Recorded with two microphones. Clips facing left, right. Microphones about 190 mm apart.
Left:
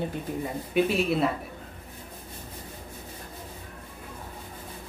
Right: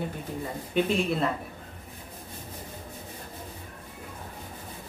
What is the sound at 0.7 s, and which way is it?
Speech, 5° left (ahead or behind).